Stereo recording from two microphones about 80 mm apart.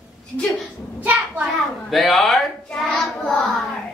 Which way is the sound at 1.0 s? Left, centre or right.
Centre.